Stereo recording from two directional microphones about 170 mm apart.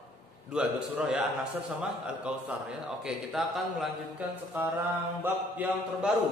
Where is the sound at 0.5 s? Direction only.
5° right (ahead or behind).